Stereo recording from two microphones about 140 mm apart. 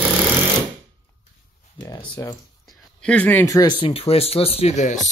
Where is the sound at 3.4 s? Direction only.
25° left (ahead or behind).